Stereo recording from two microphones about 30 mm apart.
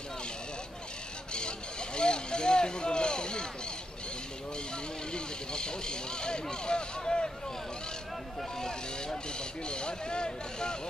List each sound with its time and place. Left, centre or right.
1.3 s vehicle: left
5.1 s speech: left
8.5 s speech: left